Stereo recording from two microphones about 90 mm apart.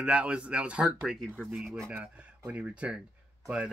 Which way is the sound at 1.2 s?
5° left (ahead or behind).